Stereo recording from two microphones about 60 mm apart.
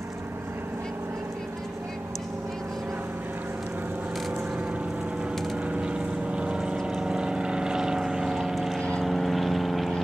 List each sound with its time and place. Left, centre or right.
5.7 s vehicle: centre
8.7 s vehicle: centre
9.0 s vehicle: centre